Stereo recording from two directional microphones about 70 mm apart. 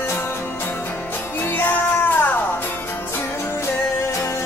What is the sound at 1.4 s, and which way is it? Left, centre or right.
Music, left.